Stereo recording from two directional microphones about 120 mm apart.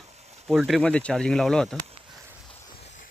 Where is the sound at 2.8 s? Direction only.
90° left.